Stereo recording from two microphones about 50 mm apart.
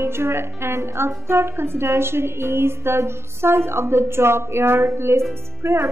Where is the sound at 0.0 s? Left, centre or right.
Right.